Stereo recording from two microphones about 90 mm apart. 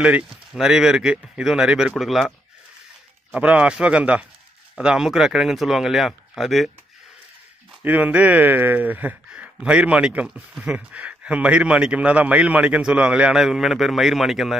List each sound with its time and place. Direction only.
0.0 s a man's voice: 10° right (ahead or behind)
3.3 s a man's voice: 15° right (ahead or behind)
7.8 s a man's voice: 15° right (ahead or behind)